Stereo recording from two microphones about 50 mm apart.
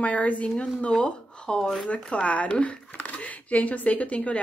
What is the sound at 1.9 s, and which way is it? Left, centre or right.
Speech, left.